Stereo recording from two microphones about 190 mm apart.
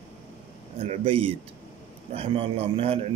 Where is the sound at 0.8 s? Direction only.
30° right (ahead or behind).